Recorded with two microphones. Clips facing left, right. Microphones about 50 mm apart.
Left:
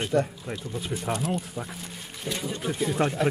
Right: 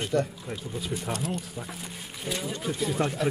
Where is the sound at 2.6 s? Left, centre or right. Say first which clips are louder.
Left 3 dB; centre.